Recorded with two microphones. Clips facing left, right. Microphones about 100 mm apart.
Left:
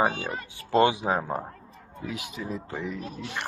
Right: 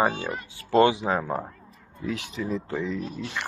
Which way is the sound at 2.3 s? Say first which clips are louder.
Right 5 dB; 15° left (ahead or behind).